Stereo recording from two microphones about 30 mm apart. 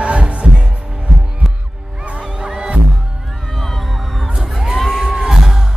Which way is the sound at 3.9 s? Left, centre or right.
Centre.